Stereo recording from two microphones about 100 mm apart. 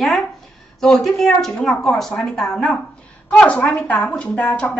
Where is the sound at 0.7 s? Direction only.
Centre (ahead or behind).